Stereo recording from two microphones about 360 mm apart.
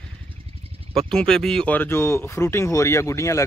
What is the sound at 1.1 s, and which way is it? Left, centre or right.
Speech, centre.